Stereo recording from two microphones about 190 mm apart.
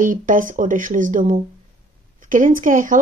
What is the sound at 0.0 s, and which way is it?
Speech, 45° right (ahead or behind).